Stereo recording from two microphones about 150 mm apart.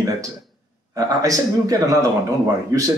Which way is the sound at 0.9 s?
25° right (ahead or behind).